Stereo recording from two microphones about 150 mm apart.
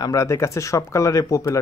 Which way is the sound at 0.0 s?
20° left (ahead or behind).